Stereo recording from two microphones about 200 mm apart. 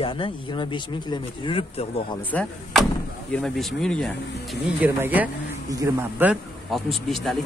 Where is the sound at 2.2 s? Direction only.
5° left (ahead or behind).